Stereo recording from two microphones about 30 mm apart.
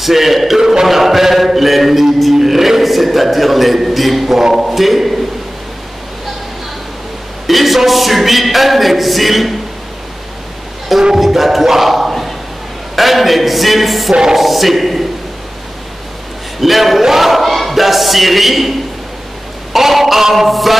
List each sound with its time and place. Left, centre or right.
0.0 s a capella: centre
0.6 s music: centre
0.8 s a sound: centre
2.3 s a man's voice: centre
4.6 s a capella: centre
7.4 s a capella: centre
11.1 s speech: centre
12.9 s a capella: centre
16.6 s a capella: centre
19.7 s a sound: centre